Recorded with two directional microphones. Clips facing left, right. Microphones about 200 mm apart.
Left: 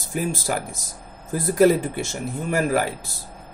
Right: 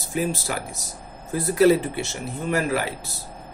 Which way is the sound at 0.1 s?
45° left (ahead or behind).